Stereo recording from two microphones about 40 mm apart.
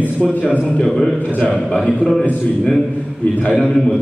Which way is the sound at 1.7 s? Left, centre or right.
Left.